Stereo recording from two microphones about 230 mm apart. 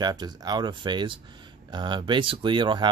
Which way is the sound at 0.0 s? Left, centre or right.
Centre.